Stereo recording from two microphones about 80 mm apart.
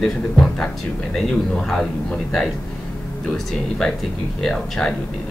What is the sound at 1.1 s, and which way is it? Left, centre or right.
Speech, centre.